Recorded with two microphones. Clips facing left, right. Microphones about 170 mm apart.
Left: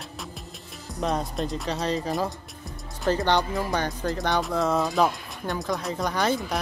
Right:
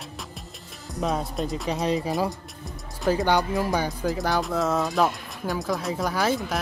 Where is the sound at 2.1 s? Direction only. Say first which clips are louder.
Right 2 dB; centre (ahead or behind).